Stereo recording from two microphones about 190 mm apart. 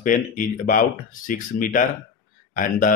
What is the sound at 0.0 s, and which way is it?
Speech, 45° left (ahead or behind).